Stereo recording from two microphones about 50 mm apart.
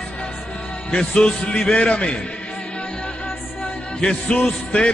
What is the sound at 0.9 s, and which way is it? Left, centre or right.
Speech, left.